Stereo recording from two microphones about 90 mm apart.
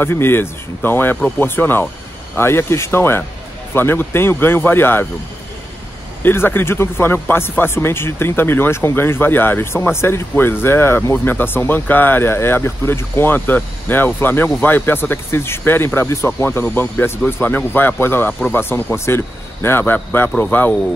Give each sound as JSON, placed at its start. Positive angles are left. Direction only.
{"t": 0.0, "sound": "speech", "side_deg": 25}
{"t": 6.2, "sound": "speech", "side_deg": 25}